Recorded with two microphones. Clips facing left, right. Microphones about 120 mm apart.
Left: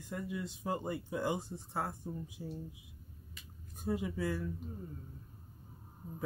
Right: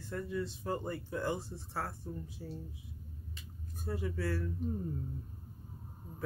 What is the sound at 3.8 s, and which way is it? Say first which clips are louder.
Speech: left 2 dB; 15° left (ahead or behind).